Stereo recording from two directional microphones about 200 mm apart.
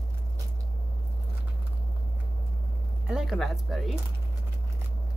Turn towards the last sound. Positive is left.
turn(degrees=0)  # may be behind; listen again after turning